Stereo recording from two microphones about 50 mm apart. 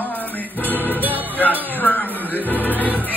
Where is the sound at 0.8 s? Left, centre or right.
Left.